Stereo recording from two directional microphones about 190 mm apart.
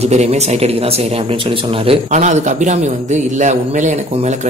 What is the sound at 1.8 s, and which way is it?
A man's voice, 40° right (ahead or behind).